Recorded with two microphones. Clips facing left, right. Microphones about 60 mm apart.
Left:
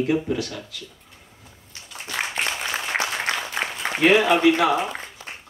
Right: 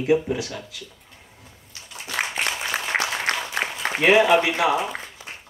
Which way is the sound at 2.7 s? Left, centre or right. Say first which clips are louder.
Right 1 dB; right.